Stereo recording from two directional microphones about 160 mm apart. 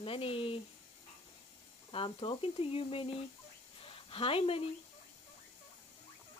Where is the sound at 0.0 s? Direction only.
35° left (ahead or behind).